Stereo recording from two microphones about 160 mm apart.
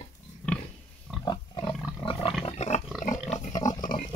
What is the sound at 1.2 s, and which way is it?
Pig, 30° left (ahead or behind).